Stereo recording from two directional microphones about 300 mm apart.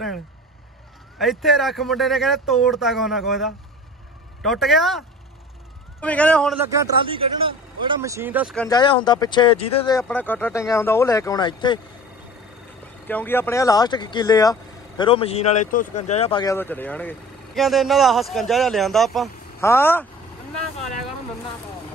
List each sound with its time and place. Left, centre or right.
1.1 s a man's voice: centre
8.6 s speech: centre
10.0 s speech: centre
13.0 s a man's voice: centre